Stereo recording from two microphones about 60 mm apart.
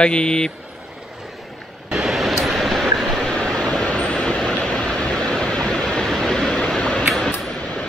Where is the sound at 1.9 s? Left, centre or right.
Centre.